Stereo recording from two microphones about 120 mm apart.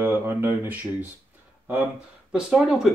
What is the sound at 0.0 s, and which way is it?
Speech, 20° right (ahead or behind).